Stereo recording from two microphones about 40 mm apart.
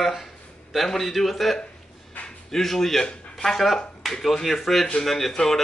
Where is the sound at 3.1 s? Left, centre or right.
Left.